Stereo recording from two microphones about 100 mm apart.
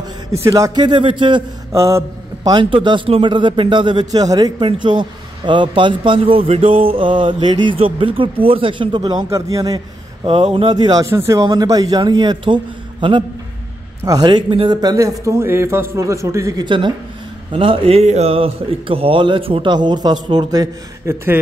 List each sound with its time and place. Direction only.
0.3 s a man's voice: 30° right (ahead or behind); by 1.4 s 50° right (ahead or behind)
1.7 s a sound: 30° right (ahead or behind)
2.6 s a man's voice: 55° right (ahead or behind)
7.7 s a man's voice: 65° right (ahead or behind); by 9.2 s 50° right (ahead or behind)
9.3 s a man's voice: 35° right (ahead or behind)
10.2 s a man's voice: 65° right (ahead or behind); by 11.1 s 45° right (ahead or behind)
11.1 s a man's voice: 30° right (ahead or behind); by 13.2 s 55° right (ahead or behind)
14.0 s a man's voice: 45° right (ahead or behind)
14.8 s a man's voice: 40° right (ahead or behind)
16.6 s a man's voice: 55° right (ahead or behind)
19.7 s a man's voice: 50° right (ahead or behind)